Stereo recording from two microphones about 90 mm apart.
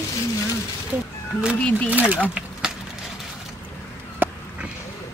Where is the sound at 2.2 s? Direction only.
10° right (ahead or behind).